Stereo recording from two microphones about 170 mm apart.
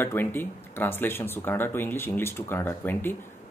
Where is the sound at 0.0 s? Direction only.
10° left (ahead or behind).